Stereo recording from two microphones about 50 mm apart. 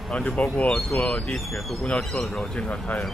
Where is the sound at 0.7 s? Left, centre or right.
Centre.